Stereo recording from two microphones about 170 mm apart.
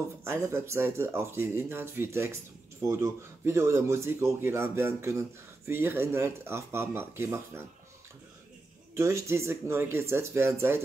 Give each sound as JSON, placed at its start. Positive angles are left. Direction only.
{"t": 0.2, "sound": "speech", "side_deg": -15}
{"t": 8.9, "sound": "speech", "side_deg": -15}